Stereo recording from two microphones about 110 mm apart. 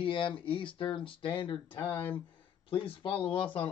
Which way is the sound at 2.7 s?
55° left (ahead or behind).